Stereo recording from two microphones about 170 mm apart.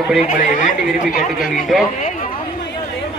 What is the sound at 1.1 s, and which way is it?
Speech, 55° left (ahead or behind).